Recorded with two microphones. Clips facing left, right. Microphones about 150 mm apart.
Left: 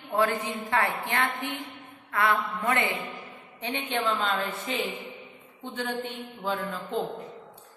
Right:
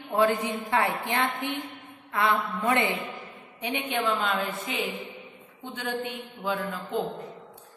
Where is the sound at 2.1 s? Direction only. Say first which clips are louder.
Even; 20° right (ahead or behind).